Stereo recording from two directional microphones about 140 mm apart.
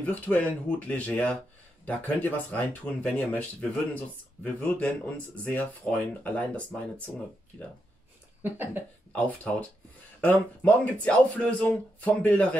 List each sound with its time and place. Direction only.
0.0 s speech: 10° left (ahead or behind)
7.1 s speech: 5° right (ahead or behind)
8.4 s speech: 15° right (ahead or behind)
9.1 s speech: 10° left (ahead or behind)